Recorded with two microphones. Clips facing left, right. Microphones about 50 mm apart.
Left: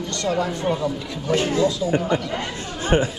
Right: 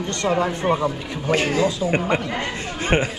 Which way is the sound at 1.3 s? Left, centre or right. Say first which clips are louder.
Even; right.